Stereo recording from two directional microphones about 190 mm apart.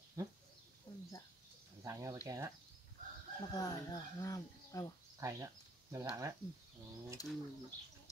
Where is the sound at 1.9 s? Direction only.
15° right (ahead or behind).